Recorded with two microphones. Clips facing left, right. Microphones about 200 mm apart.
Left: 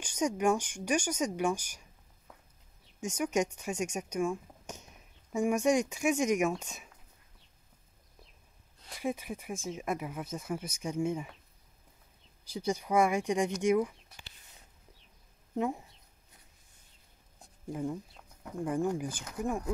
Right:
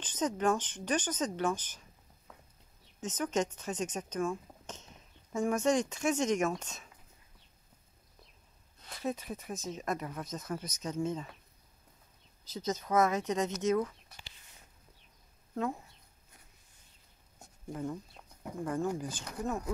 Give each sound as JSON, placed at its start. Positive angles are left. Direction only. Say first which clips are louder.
{"t": 0.0, "sound": "speech", "louder": "left 2 dB", "side_deg": 10}
{"t": 3.0, "sound": "speech", "louder": "left 2 dB", "side_deg": 10}
{"t": 8.9, "sound": "speech", "louder": "left 1 dB", "side_deg": 10}
{"t": 12.4, "sound": "speech", "louder": "left 2 dB", "side_deg": 10}
{"t": 15.5, "sound": "speech", "louder": "left 2 dB", "side_deg": 15}
{"t": 18.6, "sound": "speech", "louder": "left 2 dB", "side_deg": 15}